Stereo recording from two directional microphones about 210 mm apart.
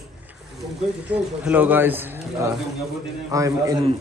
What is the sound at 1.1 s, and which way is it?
Speech, 5° right (ahead or behind).